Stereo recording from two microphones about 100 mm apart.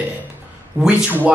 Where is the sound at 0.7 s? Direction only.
15° right (ahead or behind).